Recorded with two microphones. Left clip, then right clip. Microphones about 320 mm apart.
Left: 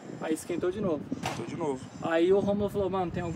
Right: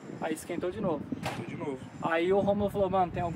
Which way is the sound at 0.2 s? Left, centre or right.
Centre.